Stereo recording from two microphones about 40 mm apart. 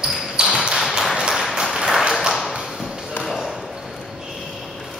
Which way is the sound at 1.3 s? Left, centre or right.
Centre.